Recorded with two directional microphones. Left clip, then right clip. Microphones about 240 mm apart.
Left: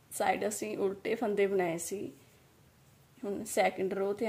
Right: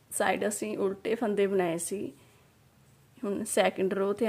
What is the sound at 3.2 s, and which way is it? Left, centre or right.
A woman's voice, centre.